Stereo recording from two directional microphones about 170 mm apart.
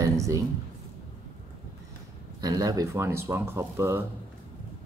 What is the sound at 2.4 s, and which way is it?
Speech, 20° right (ahead or behind).